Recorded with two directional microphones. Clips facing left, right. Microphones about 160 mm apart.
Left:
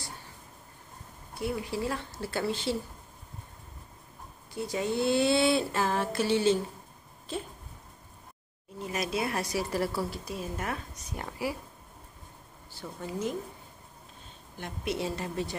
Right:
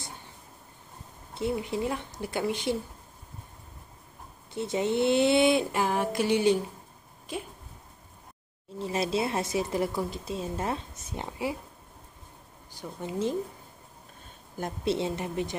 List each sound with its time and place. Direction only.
1.3 s speech: 25° right (ahead or behind)
4.6 s speech: 20° right (ahead or behind)
8.7 s speech: 30° right (ahead or behind)
12.7 s speech: 15° right (ahead or behind)
14.9 s speech: 20° right (ahead or behind)